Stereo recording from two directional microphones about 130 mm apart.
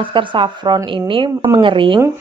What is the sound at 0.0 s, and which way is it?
Speech, 40° right (ahead or behind).